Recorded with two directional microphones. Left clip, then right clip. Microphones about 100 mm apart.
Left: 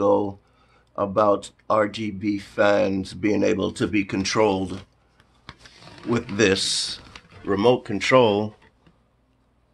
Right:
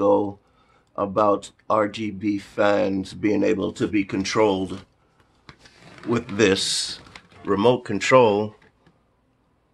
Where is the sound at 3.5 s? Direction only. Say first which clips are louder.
Even; 20° left (ahead or behind).